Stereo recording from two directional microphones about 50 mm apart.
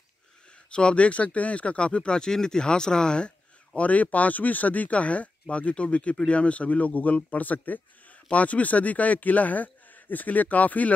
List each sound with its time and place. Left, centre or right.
0.7 s speech: left